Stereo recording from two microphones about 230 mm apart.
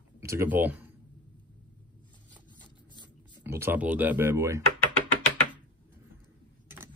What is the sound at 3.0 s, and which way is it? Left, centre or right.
Speech, centre.